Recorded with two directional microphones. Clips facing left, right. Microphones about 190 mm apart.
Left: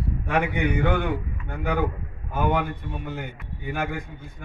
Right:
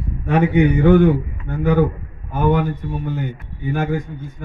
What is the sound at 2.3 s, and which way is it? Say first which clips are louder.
A man's voice: right 6 dB; 45° right (ahead or behind).